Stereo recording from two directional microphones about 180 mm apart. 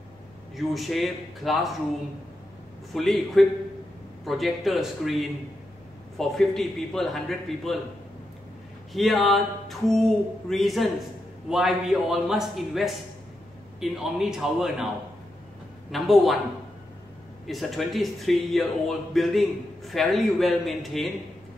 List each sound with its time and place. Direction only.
0.6 s speech: centre (ahead or behind)
2.9 s speech: centre (ahead or behind)
8.9 s speech: centre (ahead or behind)
15.9 s speech: centre (ahead or behind)
17.5 s speech: centre (ahead or behind)